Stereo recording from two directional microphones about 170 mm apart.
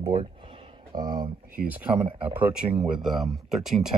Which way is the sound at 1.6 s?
10° right (ahead or behind).